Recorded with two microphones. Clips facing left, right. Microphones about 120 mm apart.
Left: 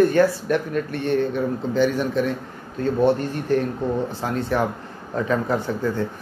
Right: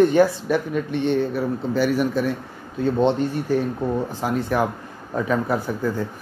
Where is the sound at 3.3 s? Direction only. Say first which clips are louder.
Even; 10° right (ahead or behind).